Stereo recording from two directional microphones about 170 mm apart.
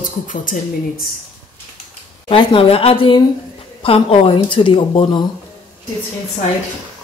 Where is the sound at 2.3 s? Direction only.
30° left (ahead or behind).